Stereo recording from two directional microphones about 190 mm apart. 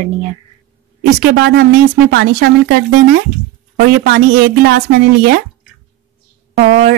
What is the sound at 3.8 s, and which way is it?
A woman's voice, 50° right (ahead or behind).